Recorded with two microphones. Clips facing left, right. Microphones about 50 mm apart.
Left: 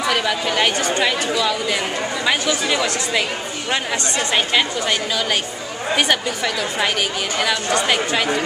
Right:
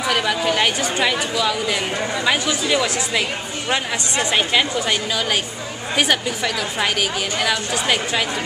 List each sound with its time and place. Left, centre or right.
0.1 s a woman's voice: centre
4.4 s a woman's voice: centre